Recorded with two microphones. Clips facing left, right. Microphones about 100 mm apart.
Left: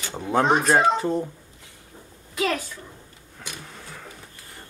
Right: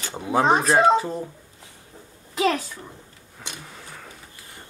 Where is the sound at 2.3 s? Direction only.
25° right (ahead or behind).